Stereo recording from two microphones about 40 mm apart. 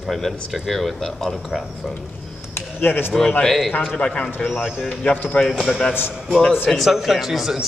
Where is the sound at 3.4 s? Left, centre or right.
Centre.